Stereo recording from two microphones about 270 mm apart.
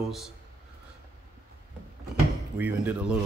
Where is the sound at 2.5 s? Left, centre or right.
Centre.